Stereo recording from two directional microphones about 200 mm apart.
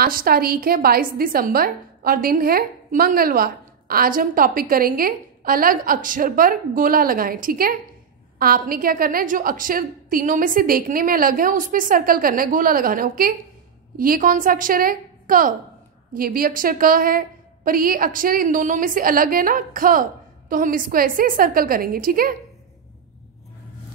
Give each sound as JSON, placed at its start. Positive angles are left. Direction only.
{"t": 0.0, "sound": "a woman's voice", "side_deg": -45}